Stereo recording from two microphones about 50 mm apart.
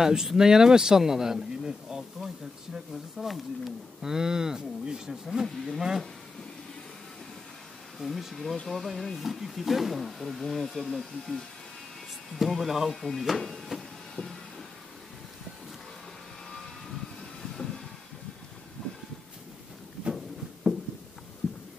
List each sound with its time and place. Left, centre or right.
0.0 s speech: centre
8.0 s speech: centre
13.2 s a sound: centre
17.4 s train: centre
18.8 s train: left